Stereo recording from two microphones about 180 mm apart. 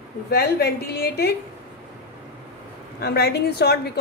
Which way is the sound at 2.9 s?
65° left (ahead or behind).